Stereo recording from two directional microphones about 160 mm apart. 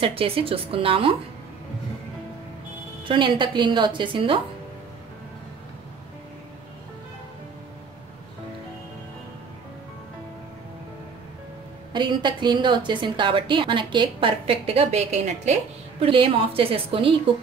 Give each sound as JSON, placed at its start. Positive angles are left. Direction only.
{"t": 0.0, "sound": "a woman's voice", "side_deg": -35}
{"t": 3.1, "sound": "a woman's voice", "side_deg": -30}
{"t": 11.9, "sound": "a woman's voice", "side_deg": -30}